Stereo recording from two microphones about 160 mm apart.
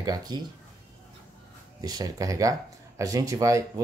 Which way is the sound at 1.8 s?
25° right (ahead or behind).